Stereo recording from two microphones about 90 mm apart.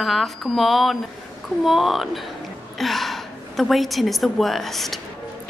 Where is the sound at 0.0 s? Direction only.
Centre (ahead or behind).